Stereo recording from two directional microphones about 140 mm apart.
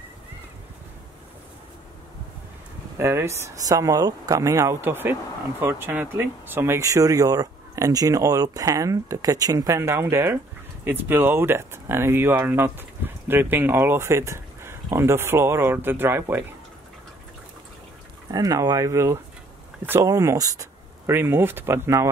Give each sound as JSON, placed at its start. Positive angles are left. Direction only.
{"t": 3.0, "sound": "speech", "side_deg": -20}
{"t": 18.3, "sound": "speech", "side_deg": -25}